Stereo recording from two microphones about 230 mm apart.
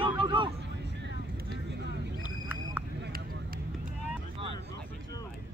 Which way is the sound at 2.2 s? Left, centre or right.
Centre.